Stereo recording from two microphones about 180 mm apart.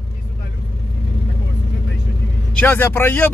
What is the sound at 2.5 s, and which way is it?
Speech, 10° left (ahead or behind).